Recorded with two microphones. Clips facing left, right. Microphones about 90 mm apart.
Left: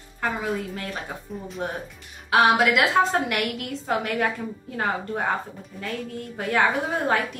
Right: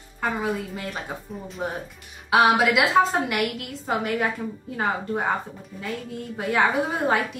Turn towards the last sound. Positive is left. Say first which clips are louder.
# right 1 dB
turn(degrees=-5)  # may be behind; listen again after turning